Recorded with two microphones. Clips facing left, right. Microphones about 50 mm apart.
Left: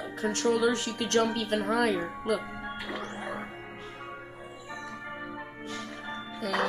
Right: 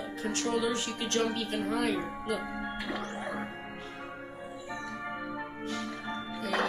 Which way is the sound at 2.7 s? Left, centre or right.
Centre.